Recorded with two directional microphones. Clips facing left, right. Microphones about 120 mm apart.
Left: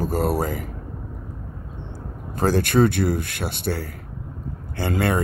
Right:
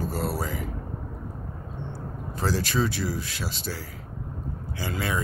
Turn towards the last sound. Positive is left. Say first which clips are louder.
# left 7 dB
turn(degrees=55)  # may be behind; listen again after turning